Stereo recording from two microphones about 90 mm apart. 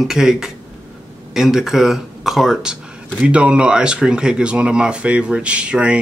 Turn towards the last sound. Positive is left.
turn(degrees=-15)  # may be behind; listen again after turning